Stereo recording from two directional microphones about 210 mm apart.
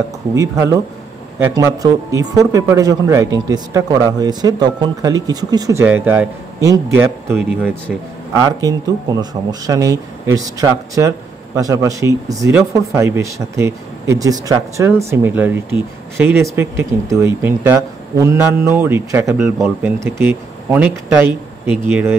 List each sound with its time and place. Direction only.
0.3 s a man's voice: 15° right (ahead or behind)